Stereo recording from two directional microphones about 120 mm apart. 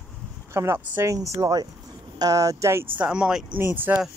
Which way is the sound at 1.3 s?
35° right (ahead or behind).